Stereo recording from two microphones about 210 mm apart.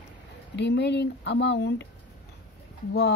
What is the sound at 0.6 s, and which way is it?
Speech, 55° left (ahead or behind).